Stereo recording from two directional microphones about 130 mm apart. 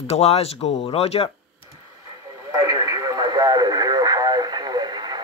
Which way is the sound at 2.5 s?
25° right (ahead or behind).